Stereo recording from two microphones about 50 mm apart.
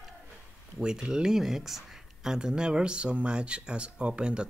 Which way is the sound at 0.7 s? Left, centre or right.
Centre.